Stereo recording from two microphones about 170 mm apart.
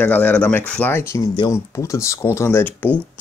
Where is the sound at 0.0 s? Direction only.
10° left (ahead or behind).